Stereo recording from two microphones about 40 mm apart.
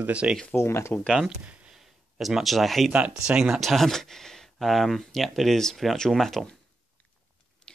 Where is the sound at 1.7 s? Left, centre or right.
Centre.